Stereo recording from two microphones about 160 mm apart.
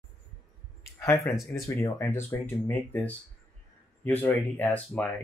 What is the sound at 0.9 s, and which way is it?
Speech, 15° left (ahead or behind).